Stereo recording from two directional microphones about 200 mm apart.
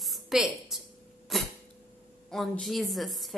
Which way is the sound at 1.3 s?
Centre (ahead or behind).